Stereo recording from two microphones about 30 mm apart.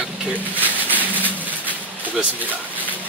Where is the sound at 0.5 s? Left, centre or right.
Right.